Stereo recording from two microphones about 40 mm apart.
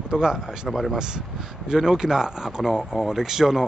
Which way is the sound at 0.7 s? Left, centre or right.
Centre.